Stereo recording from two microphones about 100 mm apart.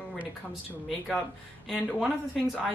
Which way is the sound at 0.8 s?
5° left (ahead or behind).